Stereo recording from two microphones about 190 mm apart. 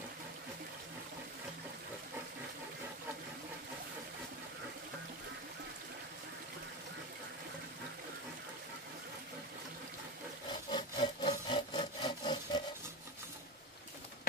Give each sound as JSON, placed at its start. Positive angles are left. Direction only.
{"t": 10.5, "sound": "sawing", "side_deg": 25}